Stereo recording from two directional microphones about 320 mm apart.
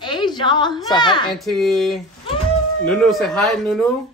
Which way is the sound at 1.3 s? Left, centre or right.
Centre.